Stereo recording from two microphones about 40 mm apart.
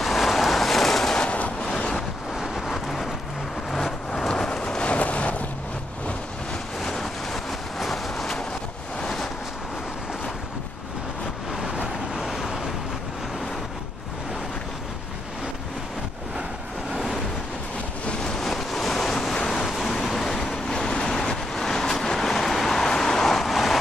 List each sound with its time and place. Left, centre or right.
0.0 s vehicle: centre
1.1 s vehicle: left
1.6 s waves: left
2.5 s vehicle: centre
4.2 s vehicle: centre
4.6 s a sound: left
6.8 s vehicle: centre
7.8 s a sound: centre
11.5 s vehicle: centre
16.9 s vehicle: centre
18.2 s waves: centre
19.6 s vehicle: centre
20.6 s vehicle: centre
21.6 s vehicle: centre